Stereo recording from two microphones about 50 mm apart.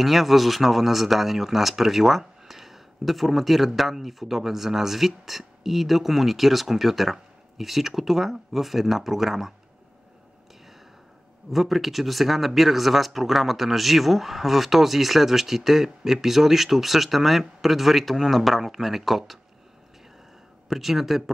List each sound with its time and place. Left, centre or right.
0.0 s speech: centre
11.5 s speech: centre
20.7 s speech: centre